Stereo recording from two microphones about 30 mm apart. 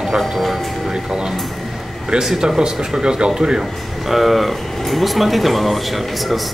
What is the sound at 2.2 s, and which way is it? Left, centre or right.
Speech, right.